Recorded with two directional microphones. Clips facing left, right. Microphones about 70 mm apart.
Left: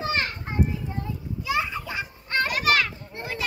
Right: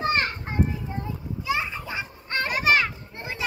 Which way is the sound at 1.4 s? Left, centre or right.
Right.